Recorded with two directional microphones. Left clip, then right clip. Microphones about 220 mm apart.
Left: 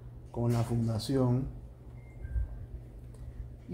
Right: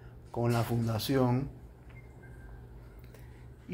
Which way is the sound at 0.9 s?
5° right (ahead or behind).